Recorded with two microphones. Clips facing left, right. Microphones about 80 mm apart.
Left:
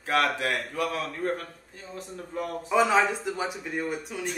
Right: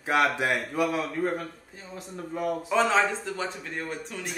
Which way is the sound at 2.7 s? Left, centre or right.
Centre.